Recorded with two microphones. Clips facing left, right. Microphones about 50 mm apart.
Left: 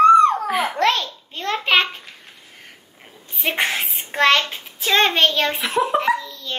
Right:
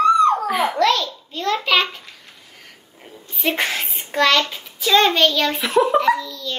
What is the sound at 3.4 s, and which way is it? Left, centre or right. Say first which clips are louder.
A child's voice: even; left.